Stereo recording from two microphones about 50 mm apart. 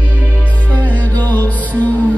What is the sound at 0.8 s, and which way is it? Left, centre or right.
Music, left.